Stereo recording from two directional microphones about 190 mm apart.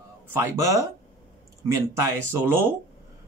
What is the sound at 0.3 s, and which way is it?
Speech, 15° right (ahead or behind).